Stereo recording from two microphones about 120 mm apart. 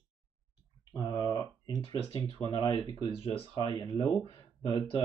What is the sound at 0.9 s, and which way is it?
Speech, 35° left (ahead or behind).